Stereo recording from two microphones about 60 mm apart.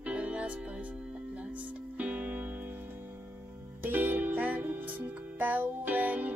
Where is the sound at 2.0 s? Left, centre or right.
Right.